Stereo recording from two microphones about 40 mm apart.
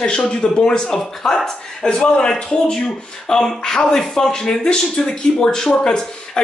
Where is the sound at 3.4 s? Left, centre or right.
Centre.